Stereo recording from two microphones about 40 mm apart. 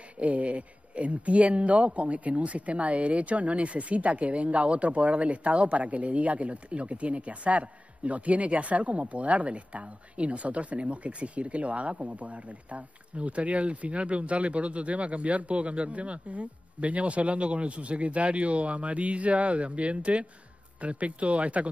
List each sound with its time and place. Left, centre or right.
0.2 s speech: right